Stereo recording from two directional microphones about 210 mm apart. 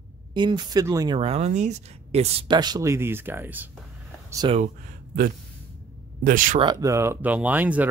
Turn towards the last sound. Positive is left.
turn(degrees=-10)  # may be behind; listen again after turning